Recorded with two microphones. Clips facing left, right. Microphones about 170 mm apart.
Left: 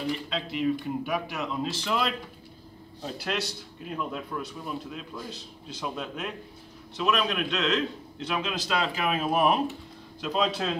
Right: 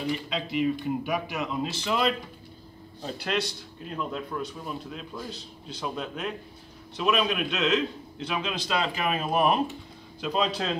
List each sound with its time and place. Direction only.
0.0 s a man's voice: centre (ahead or behind)